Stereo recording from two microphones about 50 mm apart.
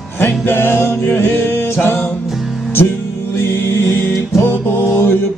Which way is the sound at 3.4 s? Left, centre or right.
Left.